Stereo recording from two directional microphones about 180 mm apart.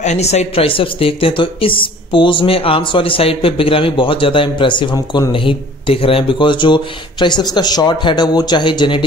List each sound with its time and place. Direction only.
0.0 s speech: 40° left (ahead or behind)